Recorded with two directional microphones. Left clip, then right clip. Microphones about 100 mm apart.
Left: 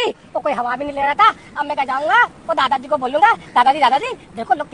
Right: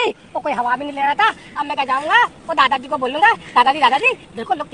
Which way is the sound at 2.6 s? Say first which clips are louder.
Right 2 dB; 30° left (ahead or behind).